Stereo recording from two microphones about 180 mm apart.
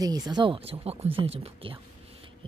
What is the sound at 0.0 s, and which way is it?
Speech, 20° right (ahead or behind).